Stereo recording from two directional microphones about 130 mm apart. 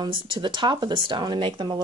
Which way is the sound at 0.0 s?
35° right (ahead or behind).